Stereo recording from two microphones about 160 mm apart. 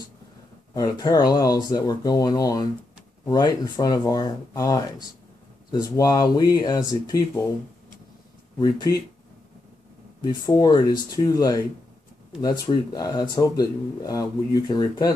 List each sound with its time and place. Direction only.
0.7 s speech: 25° left (ahead or behind)
8.5 s speech: 25° left (ahead or behind)
10.2 s speech: 25° left (ahead or behind)